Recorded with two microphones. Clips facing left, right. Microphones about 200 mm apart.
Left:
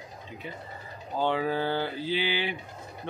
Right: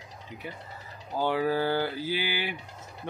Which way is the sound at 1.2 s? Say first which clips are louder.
Right 1 dB; 10° right (ahead or behind).